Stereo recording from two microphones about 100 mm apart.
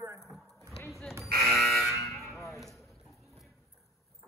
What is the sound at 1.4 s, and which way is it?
Fire alarm, centre (ahead or behind).